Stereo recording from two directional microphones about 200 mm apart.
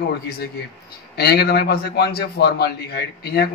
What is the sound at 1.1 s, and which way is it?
A man's voice, 55° left (ahead or behind).